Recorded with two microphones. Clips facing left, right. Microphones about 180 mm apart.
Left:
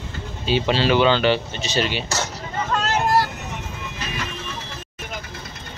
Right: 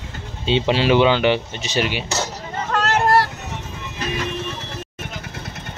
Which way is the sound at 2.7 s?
70° right (ahead or behind).